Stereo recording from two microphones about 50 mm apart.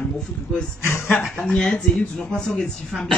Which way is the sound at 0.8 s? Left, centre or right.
Left.